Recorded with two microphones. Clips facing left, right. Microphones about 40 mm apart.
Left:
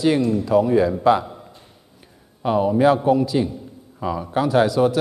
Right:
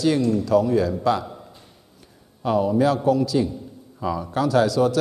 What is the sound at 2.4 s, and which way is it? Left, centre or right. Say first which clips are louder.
A man's voice: left 2 dB; left.